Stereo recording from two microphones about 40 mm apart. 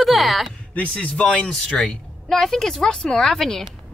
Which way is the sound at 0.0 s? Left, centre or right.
Centre.